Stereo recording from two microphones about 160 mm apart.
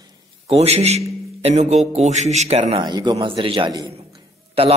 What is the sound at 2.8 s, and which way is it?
Speech, 25° right (ahead or behind).